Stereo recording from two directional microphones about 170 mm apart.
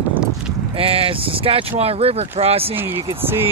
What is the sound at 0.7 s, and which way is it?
Speech, 35° right (ahead or behind).